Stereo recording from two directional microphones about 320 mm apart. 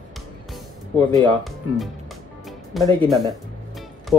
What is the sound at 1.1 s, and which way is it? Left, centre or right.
Speech, centre.